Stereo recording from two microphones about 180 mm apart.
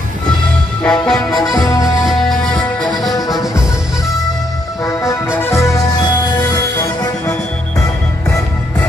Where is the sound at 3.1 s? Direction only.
20° left (ahead or behind).